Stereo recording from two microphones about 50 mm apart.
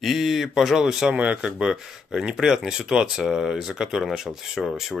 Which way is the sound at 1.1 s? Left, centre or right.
Right.